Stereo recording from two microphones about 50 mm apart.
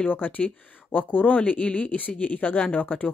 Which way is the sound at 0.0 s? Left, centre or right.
Left.